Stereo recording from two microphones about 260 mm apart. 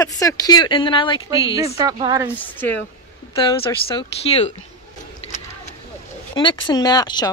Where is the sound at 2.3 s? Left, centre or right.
Centre.